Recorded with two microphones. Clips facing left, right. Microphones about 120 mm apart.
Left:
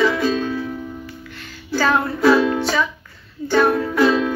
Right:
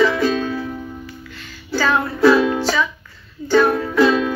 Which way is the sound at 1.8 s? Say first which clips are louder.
Left 1 dB; 25° left (ahead or behind).